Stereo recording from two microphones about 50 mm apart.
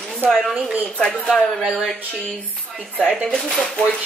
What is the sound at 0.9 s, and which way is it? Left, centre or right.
Speech, centre.